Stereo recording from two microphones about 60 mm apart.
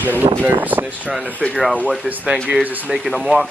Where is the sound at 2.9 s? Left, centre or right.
Centre.